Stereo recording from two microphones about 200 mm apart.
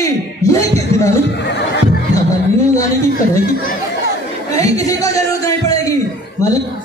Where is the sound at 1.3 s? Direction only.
60° left (ahead or behind).